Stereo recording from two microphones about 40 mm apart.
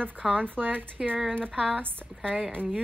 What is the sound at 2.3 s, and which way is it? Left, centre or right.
Speech, right.